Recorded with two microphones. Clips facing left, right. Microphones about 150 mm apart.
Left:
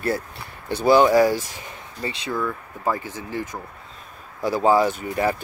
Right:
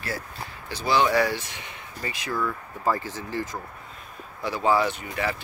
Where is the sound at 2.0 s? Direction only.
20° left (ahead or behind).